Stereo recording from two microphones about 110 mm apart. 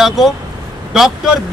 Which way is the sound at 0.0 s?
Centre (ahead or behind).